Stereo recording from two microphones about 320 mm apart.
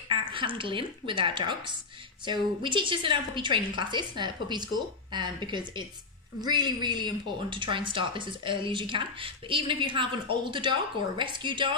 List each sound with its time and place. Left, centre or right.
0.1 s a woman's voice: centre